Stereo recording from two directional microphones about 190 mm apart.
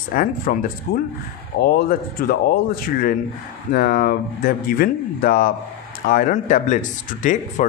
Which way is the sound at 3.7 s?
50° left (ahead or behind).